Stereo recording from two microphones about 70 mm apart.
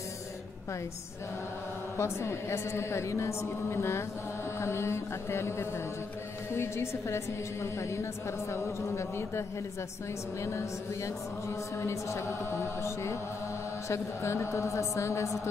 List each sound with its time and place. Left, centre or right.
2.0 s a woman's voice: left
10.4 s a woman's voice: left
11.8 s a woman's voice: left